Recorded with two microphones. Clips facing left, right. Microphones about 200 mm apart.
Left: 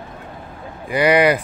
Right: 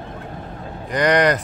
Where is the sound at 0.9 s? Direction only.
5° left (ahead or behind).